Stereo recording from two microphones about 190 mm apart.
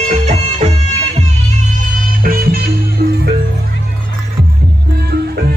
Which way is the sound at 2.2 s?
50° right (ahead or behind).